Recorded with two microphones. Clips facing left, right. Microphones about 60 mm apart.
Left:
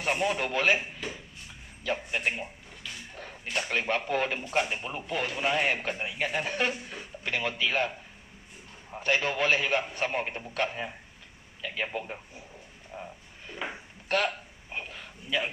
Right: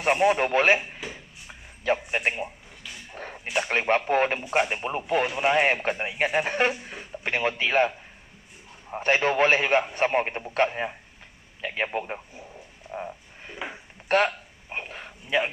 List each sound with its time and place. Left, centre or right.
0.0 s a man's voice: right
1.0 s tick-tock: centre
1.8 s a man's voice: right
3.3 s speech: right
3.7 s a man's voice: right
6.7 s speech: right
7.2 s a man's voice: right
8.9 s a man's voice: right
13.6 s a sound: centre
14.0 s a sound: right